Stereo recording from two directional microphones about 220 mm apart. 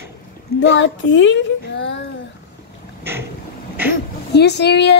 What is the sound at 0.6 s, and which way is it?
Speech, 55° left (ahead or behind).